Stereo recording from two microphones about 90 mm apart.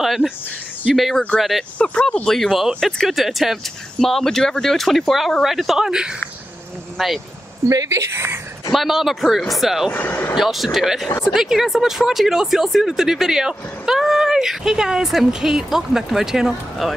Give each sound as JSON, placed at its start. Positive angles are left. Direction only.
{"t": 0.0, "sound": "cricket", "side_deg": 0}
{"t": 0.8, "sound": "speech", "side_deg": 0}
{"t": 1.8, "sound": "speech", "side_deg": 10}
{"t": 7.6, "sound": "speech", "side_deg": -35}
{"t": 8.7, "sound": "speech", "side_deg": 0}
{"t": 9.9, "sound": "speech", "side_deg": 20}
{"t": 10.3, "sound": "speech", "side_deg": 0}